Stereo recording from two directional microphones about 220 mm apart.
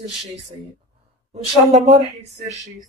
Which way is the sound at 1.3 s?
30° right (ahead or behind).